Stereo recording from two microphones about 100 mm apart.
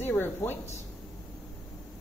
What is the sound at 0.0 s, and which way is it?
Speech, 20° left (ahead or behind).